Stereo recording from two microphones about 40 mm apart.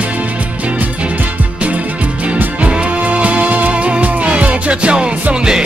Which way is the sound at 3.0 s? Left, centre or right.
Right.